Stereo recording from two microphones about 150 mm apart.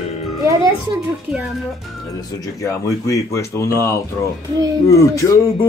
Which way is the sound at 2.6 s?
20° left (ahead or behind).